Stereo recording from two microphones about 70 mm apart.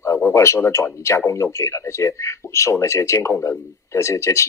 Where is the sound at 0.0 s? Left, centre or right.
Left.